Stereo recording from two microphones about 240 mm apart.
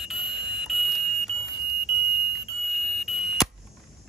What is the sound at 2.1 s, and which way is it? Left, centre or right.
Smoke detector, right.